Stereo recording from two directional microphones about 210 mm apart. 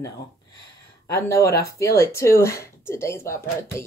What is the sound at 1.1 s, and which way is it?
Speech, 15° left (ahead or behind).